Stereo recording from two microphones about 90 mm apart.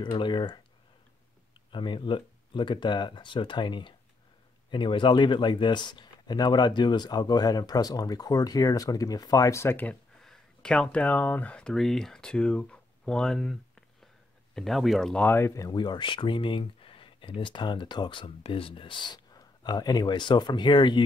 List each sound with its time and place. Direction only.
0.2 s speech: 60° left (ahead or behind)
1.7 s speech: 65° left (ahead or behind); by 9.8 s 30° left (ahead or behind)
10.2 s speech: 5° left (ahead or behind)
15.2 s speech: 30° left (ahead or behind)
15.7 s speech: 55° left (ahead or behind)